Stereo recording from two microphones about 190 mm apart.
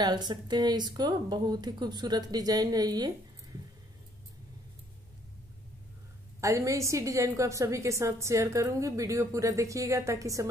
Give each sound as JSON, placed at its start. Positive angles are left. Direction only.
{"t": 0.0, "sound": "speech", "side_deg": -20}
{"t": 6.4, "sound": "a woman's voice", "side_deg": -15}